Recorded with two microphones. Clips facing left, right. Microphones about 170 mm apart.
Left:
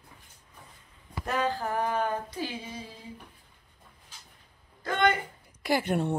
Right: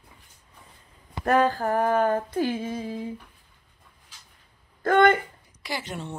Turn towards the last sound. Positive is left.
turn(degrees=55)  # may be behind; listen again after turning